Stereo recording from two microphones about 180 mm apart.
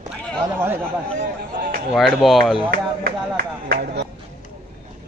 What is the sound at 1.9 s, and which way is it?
Speech, centre (ahead or behind).